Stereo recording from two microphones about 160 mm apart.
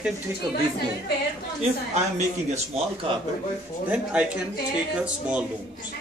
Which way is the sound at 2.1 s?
45° right (ahead or behind).